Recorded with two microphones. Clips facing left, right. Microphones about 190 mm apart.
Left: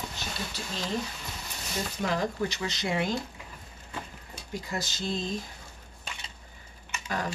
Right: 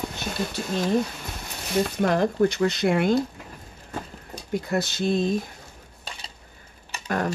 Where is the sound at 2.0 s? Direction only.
55° right (ahead or behind).